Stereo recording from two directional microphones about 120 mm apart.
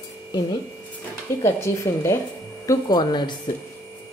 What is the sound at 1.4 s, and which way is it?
Speech, 25° left (ahead or behind).